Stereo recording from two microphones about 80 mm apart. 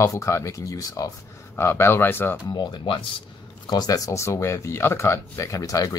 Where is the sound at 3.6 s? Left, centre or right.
Left.